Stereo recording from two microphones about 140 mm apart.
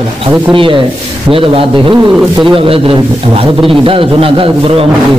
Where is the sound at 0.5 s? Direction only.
40° right (ahead or behind).